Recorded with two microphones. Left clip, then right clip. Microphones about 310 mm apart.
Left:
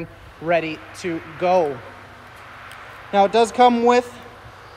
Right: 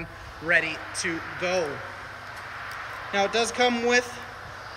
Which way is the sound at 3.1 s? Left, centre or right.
Left.